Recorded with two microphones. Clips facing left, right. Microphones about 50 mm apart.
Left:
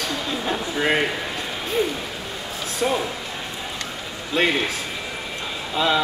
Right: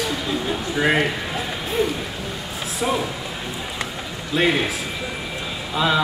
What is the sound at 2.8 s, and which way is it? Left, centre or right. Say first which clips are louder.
Speech: even; centre.